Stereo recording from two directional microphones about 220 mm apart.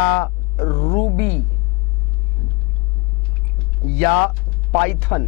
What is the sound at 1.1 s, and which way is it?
Speech, 15° left (ahead or behind).